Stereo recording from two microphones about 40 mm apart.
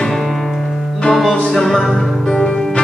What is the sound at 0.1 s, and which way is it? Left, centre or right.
Music, centre.